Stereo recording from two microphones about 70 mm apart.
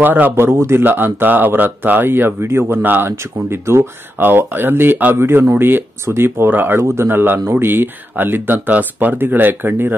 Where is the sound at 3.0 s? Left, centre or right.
Right.